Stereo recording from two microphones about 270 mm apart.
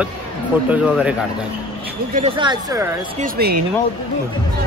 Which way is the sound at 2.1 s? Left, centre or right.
Right.